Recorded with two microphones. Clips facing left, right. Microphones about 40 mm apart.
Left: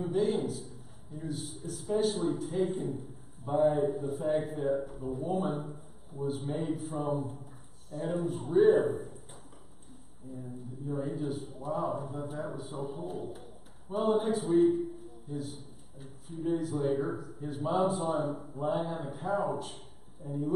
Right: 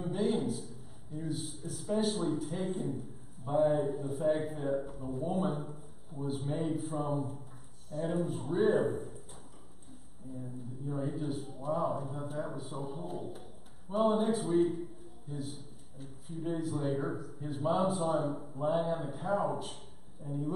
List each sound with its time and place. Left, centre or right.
0.0 s a man's voice: centre
10.3 s a man's voice: centre